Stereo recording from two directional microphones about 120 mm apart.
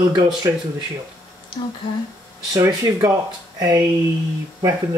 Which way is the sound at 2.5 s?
30° right (ahead or behind).